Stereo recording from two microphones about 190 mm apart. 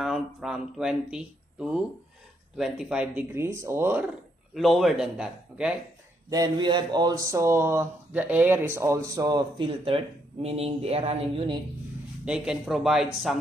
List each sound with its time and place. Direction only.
0.0 s speech: centre (ahead or behind)
4.6 s a man's voice: centre (ahead or behind)
6.3 s speech: 20° right (ahead or behind)
12.3 s a man's voice: 5° right (ahead or behind)